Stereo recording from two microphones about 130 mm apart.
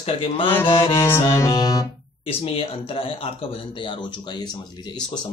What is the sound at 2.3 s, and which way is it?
Speech, 45° left (ahead or behind).